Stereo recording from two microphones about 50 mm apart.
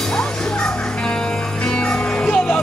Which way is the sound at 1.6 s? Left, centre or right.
Left.